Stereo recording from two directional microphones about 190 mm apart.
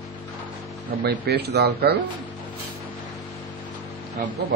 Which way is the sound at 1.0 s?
60° right (ahead or behind).